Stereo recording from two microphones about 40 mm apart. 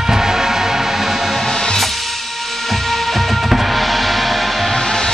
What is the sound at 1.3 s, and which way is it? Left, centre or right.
Music, centre.